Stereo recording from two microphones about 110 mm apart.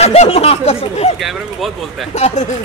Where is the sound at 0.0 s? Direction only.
75° left (ahead or behind).